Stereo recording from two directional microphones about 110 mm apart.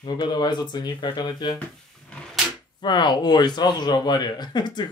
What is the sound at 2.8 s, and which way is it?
Speech, 40° left (ahead or behind).